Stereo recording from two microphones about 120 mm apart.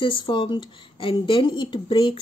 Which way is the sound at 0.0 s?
40° left (ahead or behind).